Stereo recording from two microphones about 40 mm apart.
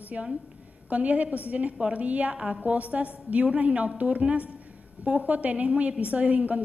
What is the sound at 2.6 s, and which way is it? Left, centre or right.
A woman's voice, right.